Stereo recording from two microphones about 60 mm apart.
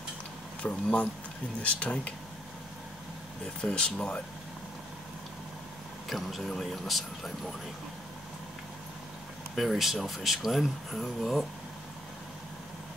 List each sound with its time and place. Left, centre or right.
0.6 s speech: left
3.6 s speech: centre
6.0 s speech: centre
9.6 s speech: centre